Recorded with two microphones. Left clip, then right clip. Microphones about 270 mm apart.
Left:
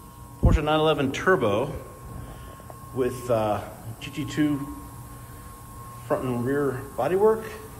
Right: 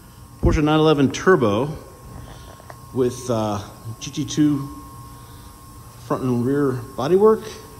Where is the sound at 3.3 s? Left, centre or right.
Right.